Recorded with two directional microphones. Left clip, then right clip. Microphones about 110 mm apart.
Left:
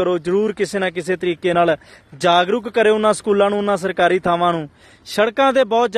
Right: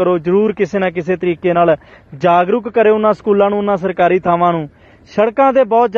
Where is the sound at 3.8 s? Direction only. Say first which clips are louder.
Right 4 dB; 20° left (ahead or behind).